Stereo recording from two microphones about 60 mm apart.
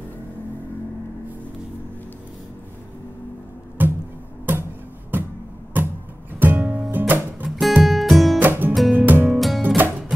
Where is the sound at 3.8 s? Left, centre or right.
Right.